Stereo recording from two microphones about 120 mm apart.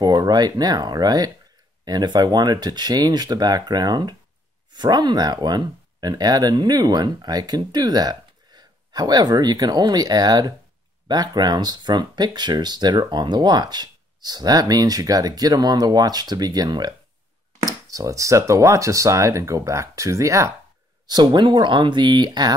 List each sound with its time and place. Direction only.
0.0 s speech: 35° right (ahead or behind)